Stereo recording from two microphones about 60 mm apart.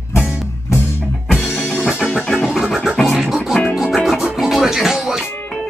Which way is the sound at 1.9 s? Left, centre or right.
Centre.